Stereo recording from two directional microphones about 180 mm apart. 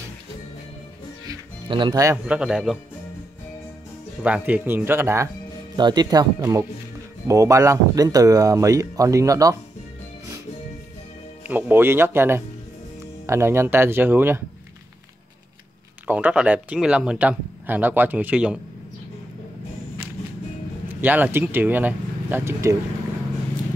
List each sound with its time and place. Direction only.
1.2 s music: 25° right (ahead or behind)
2.2 s a man's voice: 5° right (ahead or behind)
4.2 s speech: 10° right (ahead or behind)
11.4 s speech: 10° right (ahead or behind)
16.1 s speech: 10° right (ahead or behind)
21.0 s speech: 10° right (ahead or behind)